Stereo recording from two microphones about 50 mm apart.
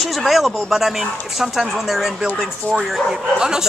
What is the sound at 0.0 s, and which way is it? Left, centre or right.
Speech, centre.